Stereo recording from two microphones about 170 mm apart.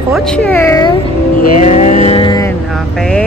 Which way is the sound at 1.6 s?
40° left (ahead or behind).